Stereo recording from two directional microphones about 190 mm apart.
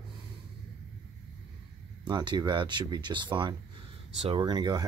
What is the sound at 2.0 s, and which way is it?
Speech, 25° right (ahead or behind).